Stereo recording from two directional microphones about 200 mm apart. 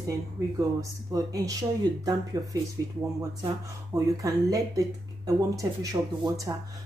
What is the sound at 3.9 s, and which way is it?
Speech, 15° right (ahead or behind).